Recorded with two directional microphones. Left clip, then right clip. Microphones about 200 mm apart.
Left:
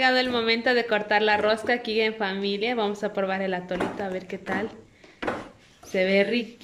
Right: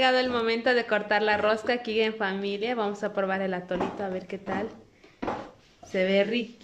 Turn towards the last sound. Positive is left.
turn(degrees=-5)  # may be behind; listen again after turning